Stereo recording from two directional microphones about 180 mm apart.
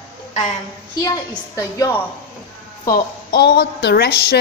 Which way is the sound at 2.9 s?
65° left (ahead or behind).